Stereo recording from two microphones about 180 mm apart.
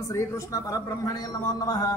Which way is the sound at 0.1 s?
15° left (ahead or behind).